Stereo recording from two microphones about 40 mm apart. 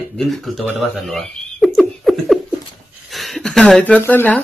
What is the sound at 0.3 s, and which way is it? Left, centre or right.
Speech, centre.